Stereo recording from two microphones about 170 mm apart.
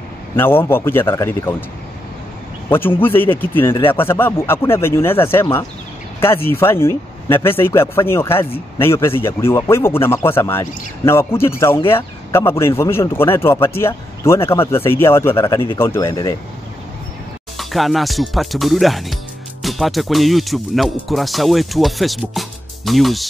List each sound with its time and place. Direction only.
0.7 s speech: 15° left (ahead or behind)
3.0 s speech: 10° left (ahead or behind)
17.6 s speech: centre (ahead or behind)